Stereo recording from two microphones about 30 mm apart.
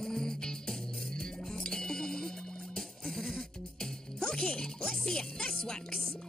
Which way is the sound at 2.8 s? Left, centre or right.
Centre.